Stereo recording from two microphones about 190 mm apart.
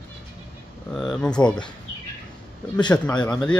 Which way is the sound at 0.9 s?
Centre (ahead or behind).